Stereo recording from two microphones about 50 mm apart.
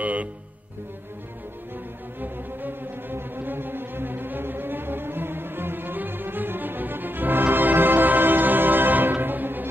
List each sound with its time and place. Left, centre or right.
0.0 s music: right
2.1 s music: right